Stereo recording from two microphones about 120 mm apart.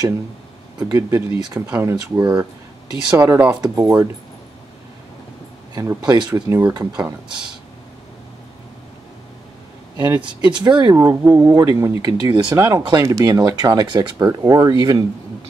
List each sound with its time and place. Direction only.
0.7 s speech: 25° right (ahead or behind)
5.8 s speech: 30° right (ahead or behind)
9.9 s speech: 35° right (ahead or behind)